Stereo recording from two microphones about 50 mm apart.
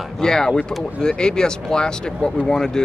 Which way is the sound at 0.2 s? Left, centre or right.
Centre.